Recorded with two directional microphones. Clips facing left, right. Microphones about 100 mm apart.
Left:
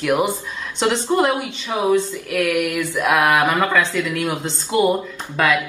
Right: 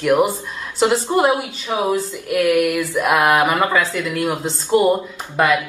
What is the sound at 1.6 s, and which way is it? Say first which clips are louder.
Speech: even; 15° right (ahead or behind).